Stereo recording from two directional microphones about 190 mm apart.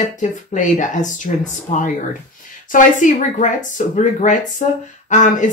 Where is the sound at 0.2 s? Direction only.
40° left (ahead or behind).